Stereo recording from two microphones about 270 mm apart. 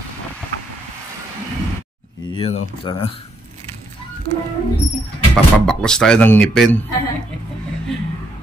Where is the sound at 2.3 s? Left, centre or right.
Left.